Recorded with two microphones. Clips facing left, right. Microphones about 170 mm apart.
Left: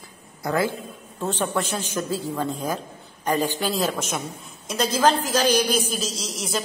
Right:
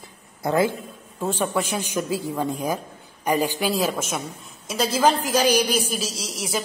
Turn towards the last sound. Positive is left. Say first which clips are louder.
# even
turn(degrees=-10)  # may be behind; listen again after turning